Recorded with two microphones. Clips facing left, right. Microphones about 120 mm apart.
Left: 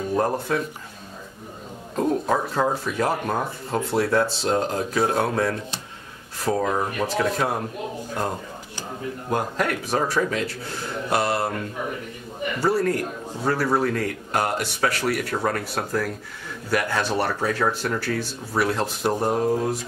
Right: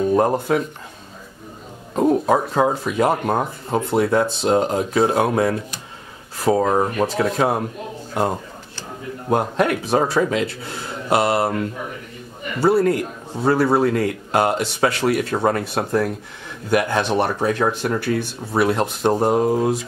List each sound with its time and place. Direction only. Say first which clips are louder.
0.1 s a man's voice: right 5 dB; 20° right (ahead or behind)
2.0 s a man's voice: right 5 dB; 20° right (ahead or behind)
6.6 s speech: right 6 dB; 35° right (ahead or behind)
7.2 s a man's voice: right 3 dB; 25° right (ahead or behind)
9.3 s a man's voice: right 6 dB; 25° right (ahead or behind)
12.5 s a man's voice: right 6 dB; 25° right (ahead or behind)